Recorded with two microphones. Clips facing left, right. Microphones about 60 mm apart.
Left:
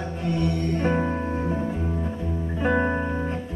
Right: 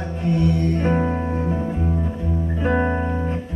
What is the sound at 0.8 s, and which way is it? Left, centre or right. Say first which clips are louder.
Music: right 3 dB; centre.